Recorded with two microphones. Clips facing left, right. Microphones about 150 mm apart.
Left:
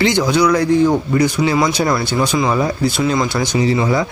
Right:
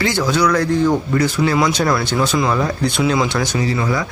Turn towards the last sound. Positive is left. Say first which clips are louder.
# left 4 dB
turn(degrees=25)  # may be behind; listen again after turning